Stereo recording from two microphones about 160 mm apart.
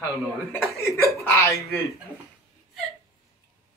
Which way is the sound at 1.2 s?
20° left (ahead or behind).